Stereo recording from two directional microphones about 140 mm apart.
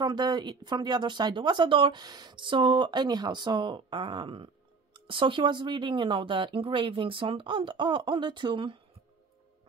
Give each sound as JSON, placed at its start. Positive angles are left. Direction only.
{"t": 0.0, "sound": "speech", "side_deg": -30}